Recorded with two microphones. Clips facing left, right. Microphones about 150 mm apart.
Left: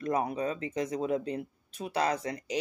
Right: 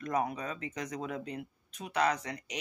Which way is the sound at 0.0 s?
30° left (ahead or behind).